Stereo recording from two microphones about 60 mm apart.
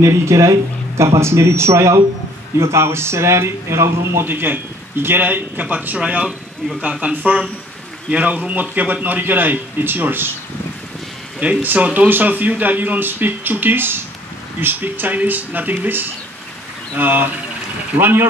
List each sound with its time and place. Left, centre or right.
0.0 s speech: right
4.3 s a man's voice: right
11.3 s speech: right